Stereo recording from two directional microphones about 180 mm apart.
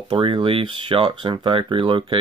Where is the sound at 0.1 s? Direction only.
30° right (ahead or behind).